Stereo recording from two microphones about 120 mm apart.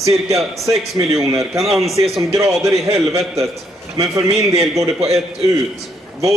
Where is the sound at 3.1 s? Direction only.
25° right (ahead or behind).